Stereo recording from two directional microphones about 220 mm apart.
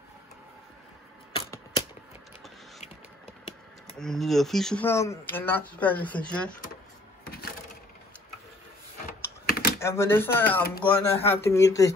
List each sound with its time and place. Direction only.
4.0 s speech: centre (ahead or behind)
7.2 s wood: 45° left (ahead or behind)
9.5 s typing: 40° left (ahead or behind)
9.8 s speech: 10° left (ahead or behind)